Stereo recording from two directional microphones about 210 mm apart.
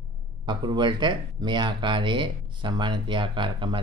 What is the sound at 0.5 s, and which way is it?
Speech, 20° right (ahead or behind).